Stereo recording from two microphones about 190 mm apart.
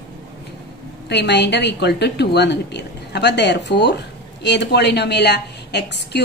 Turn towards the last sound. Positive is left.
turn(degrees=65)  # may be behind; listen again after turning